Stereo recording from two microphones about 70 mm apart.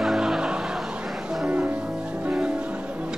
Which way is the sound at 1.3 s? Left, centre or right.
Centre.